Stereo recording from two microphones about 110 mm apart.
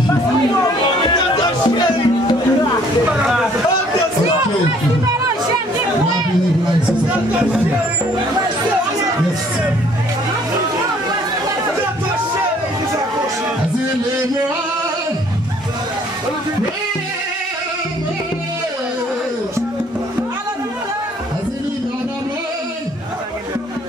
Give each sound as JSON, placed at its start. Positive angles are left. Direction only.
{"t": 1.3, "sound": "music", "side_deg": 40}
{"t": 3.1, "sound": "a sound", "side_deg": -5}
{"t": 7.1, "sound": "music", "side_deg": -15}